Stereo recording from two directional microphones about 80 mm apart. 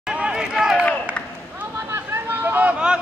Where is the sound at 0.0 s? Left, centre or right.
Centre.